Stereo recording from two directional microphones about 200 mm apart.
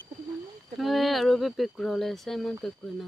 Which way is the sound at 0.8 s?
Centre (ahead or behind).